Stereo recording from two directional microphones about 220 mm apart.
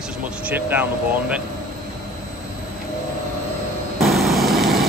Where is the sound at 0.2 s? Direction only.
5° right (ahead or behind).